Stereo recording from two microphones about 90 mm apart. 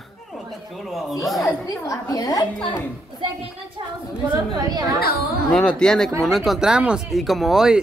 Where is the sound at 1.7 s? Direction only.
40° left (ahead or behind).